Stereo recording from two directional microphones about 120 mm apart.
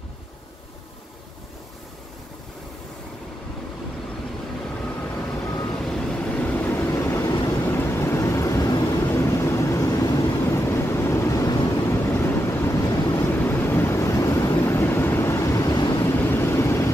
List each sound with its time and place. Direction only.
4.8 s vehicle: 15° left (ahead or behind); by 16.0 s 30° left (ahead or behind)
16.0 s vehicle: 20° left (ahead or behind)